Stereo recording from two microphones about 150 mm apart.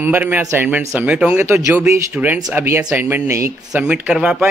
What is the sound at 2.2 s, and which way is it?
Speech, 5° right (ahead or behind).